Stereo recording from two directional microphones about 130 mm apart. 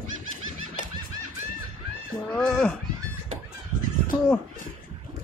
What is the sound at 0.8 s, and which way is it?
Fowl, 75° left (ahead or behind).